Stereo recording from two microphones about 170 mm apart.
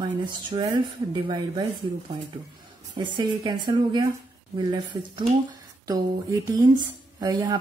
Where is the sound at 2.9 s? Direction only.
25° right (ahead or behind).